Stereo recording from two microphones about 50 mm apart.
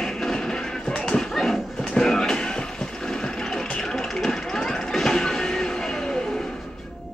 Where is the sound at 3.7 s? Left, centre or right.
Centre.